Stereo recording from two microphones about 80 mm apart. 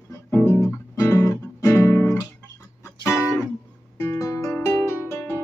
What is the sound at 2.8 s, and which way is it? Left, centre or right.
Music, left.